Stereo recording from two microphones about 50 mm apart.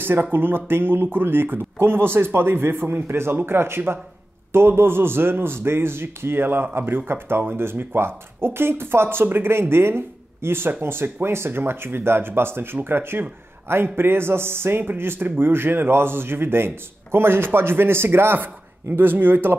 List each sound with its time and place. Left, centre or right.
0.0 s a man's voice: right